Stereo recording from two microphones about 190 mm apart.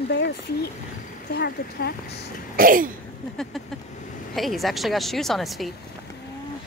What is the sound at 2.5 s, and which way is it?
Speech, 45° right (ahead or behind).